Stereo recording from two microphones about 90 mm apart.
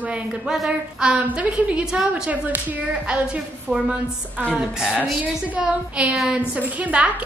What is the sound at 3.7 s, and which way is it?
A woman's voice, 15° right (ahead or behind).